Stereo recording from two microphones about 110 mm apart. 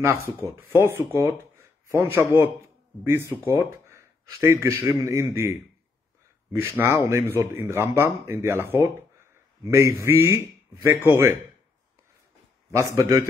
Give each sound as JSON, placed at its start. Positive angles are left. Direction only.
{"t": 0.0, "sound": "speech", "side_deg": -25}
{"t": 12.7, "sound": "speech", "side_deg": -30}